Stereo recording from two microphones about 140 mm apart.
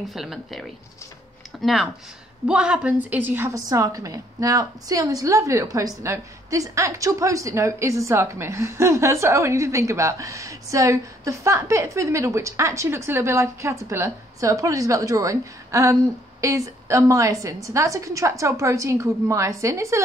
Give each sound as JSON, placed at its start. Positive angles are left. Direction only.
{"t": 0.0, "sound": "a woman's voice", "side_deg": 0}